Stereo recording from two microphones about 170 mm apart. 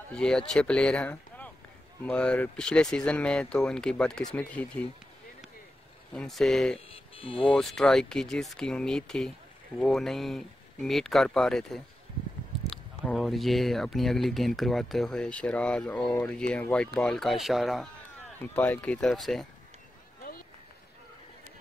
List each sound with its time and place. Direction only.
0.1 s speech: 5° left (ahead or behind)
6.1 s speech: centre (ahead or behind)
7.2 s speech: 30° left (ahead or behind)
7.4 s speech: 5° left (ahead or behind)